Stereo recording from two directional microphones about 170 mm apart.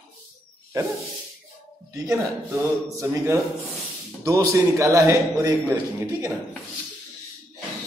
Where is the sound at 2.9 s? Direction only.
15° right (ahead or behind).